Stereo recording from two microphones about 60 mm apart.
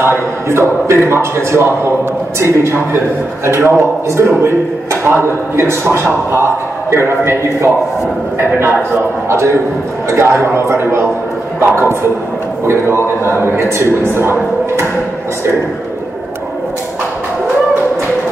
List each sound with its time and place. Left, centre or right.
0.0 s a man's voice: right